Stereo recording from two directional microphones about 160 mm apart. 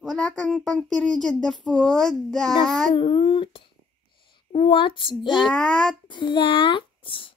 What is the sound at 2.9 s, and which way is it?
Child singing, 35° left (ahead or behind).